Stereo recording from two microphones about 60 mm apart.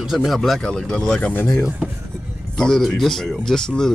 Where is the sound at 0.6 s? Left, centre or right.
Centre.